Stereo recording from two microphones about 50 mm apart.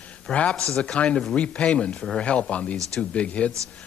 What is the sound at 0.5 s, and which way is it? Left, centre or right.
Speech, centre.